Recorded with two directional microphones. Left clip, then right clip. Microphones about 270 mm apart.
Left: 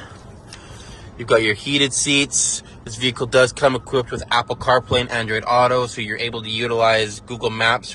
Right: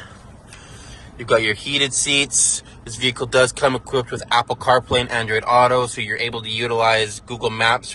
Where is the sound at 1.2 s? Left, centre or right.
Centre.